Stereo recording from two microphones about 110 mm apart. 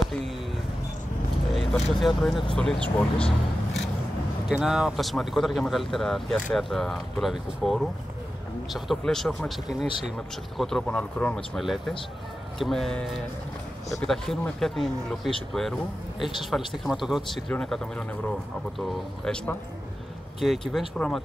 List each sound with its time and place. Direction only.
1.5 s speech: centre (ahead or behind)
4.5 s speech: 5° right (ahead or behind)